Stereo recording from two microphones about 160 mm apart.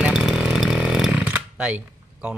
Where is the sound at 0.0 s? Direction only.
5° right (ahead or behind).